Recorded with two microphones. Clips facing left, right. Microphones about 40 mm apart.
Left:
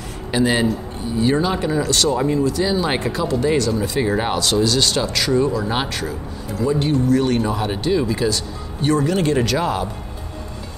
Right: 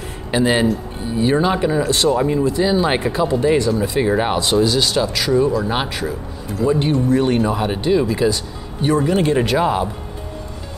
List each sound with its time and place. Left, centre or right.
0.3 s speech: centre
3.7 s speech: centre
6.6 s speech: right
7.3 s speech: centre
8.8 s speech: centre